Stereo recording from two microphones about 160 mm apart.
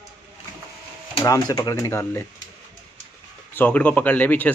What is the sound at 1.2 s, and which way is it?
Speech, 20° left (ahead or behind).